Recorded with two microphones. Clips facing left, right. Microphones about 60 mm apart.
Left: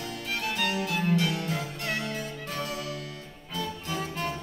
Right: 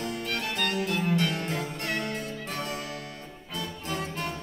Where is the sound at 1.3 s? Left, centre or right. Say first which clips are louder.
Even; right.